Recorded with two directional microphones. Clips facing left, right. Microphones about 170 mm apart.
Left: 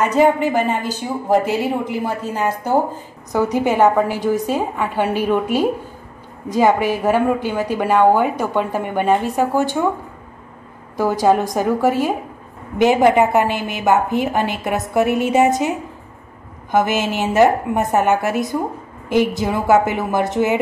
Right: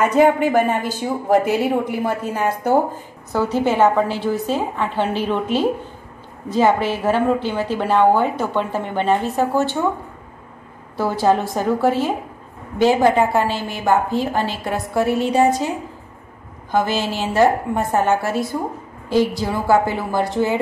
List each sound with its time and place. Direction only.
0.4 s speech: 55° right (ahead or behind)
3.3 s a woman's voice: 15° left (ahead or behind)
11.0 s a woman's voice: 15° left (ahead or behind)
16.7 s a woman's voice: 20° left (ahead or behind)